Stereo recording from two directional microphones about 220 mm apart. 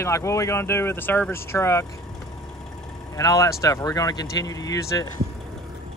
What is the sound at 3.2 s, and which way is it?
Speech, 15° left (ahead or behind).